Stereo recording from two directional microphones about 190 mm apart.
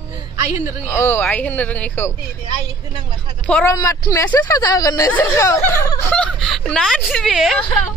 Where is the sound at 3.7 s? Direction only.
20° left (ahead or behind); by 7.5 s centre (ahead or behind).